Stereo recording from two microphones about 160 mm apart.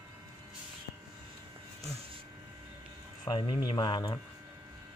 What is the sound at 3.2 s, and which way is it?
Speech, 30° left (ahead or behind).